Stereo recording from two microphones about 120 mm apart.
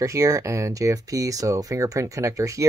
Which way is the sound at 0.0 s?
25° right (ahead or behind).